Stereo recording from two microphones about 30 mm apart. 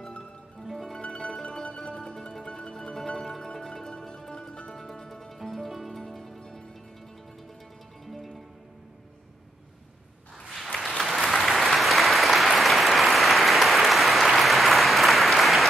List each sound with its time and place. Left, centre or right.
1.0 s music: left
5.4 s music: centre
5.9 s music: centre
10.4 s applause: centre